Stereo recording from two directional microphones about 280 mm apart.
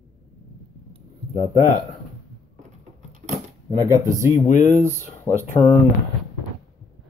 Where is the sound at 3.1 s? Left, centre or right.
Right.